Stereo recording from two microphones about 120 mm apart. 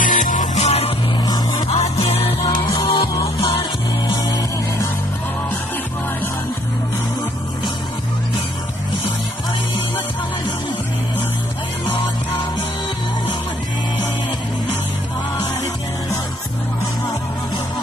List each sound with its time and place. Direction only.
0.0 s music: 90° left; by 2.3 s 55° left (ahead or behind)
2.6 s music: 25° left (ahead or behind)
2.9 s music: 45° left (ahead or behind)